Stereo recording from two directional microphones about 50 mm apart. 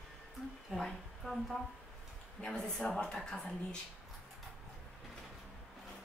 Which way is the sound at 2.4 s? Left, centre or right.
Centre.